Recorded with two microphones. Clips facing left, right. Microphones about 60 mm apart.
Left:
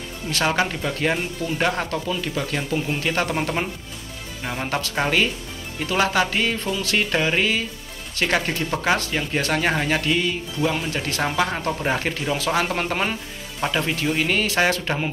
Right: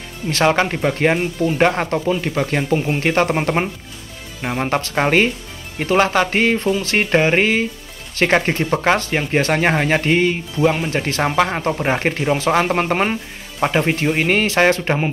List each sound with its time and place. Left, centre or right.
0.3 s speech: right